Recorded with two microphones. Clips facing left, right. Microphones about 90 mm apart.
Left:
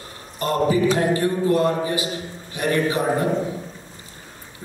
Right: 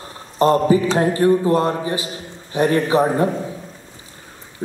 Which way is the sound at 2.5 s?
30° right (ahead or behind).